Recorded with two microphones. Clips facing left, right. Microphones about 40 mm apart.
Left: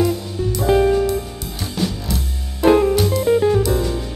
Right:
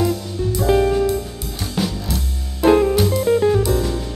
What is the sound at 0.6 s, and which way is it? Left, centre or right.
Music, centre.